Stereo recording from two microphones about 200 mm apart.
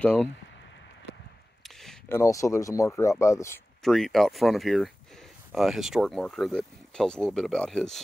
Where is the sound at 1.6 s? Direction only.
Centre (ahead or behind).